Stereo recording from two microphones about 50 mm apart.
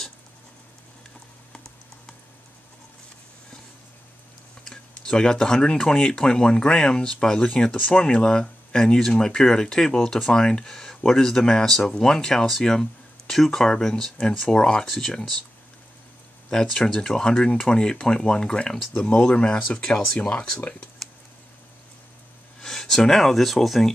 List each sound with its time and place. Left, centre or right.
4.6 s speech: centre
16.4 s speech: centre
22.6 s speech: centre